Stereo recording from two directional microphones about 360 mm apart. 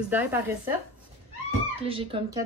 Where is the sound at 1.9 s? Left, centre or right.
Centre.